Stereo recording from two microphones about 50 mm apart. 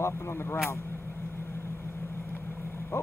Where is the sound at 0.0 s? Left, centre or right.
Left.